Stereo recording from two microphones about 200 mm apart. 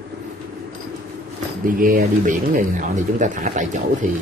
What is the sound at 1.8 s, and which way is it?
Speech, 45° right (ahead or behind).